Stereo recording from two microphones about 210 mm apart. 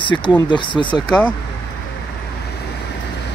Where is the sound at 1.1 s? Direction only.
5° left (ahead or behind).